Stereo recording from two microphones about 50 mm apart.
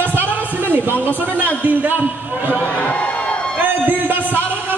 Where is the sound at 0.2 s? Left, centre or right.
Right.